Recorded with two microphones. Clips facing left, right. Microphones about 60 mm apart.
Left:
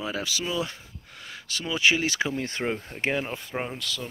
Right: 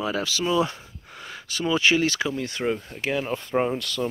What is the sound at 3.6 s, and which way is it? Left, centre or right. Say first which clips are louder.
Speech: right 9 dB; centre.